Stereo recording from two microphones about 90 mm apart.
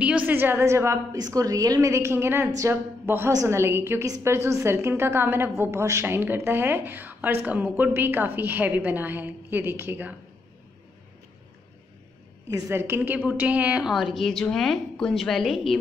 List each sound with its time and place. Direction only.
0.0 s a woman's voice: 15° right (ahead or behind)
12.4 s a woman's voice: 40° right (ahead or behind)
12.7 s a woman's voice: 25° right (ahead or behind)
13.8 s a woman's voice: 5° right (ahead or behind)